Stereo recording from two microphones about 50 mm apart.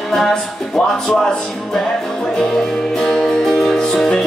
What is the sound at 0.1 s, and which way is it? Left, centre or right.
Music, centre.